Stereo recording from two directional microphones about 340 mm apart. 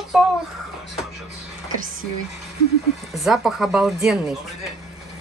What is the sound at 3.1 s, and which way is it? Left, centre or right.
Speech, centre.